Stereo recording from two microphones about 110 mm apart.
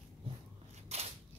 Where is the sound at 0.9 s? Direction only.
75° right (ahead or behind).